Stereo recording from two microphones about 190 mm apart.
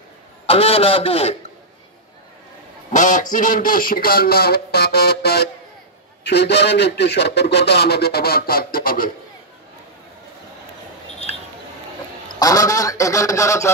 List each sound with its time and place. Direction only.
0.5 s a man's voice: 30° left (ahead or behind)
2.9 s a man's voice: 40° left (ahead or behind)
12.4 s a sound: 20° left (ahead or behind)